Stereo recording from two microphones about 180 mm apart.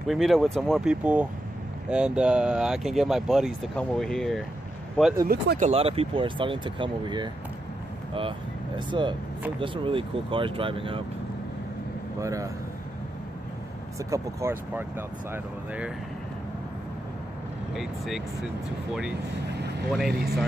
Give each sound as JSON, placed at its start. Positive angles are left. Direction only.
{"t": 0.1, "sound": "speech", "side_deg": 0}
{"t": 5.6, "sound": "speech", "side_deg": -35}
{"t": 12.2, "sound": "speech", "side_deg": -20}
{"t": 13.9, "sound": "speech", "side_deg": -15}
{"t": 17.7, "sound": "speech", "side_deg": 0}
{"t": 19.5, "sound": "vehicle", "side_deg": -65}
{"t": 19.9, "sound": "speech", "side_deg": 0}